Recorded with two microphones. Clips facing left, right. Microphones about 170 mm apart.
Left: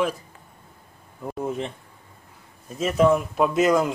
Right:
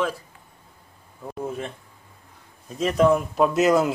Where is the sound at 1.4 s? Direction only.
20° left (ahead or behind).